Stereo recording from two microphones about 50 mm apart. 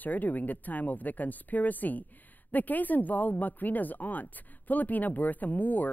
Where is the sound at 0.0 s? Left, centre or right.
Left.